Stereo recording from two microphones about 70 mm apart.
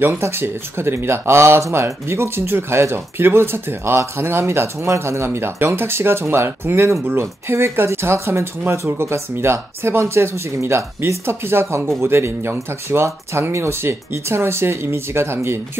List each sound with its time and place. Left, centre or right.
0.2 s speech: right